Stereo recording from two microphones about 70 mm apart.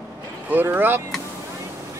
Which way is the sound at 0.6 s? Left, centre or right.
Right.